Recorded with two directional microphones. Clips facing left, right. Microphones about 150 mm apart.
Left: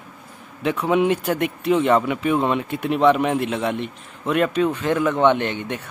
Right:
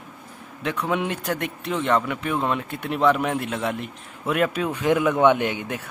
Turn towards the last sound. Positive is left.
turn(degrees=-5)  # may be behind; listen again after turning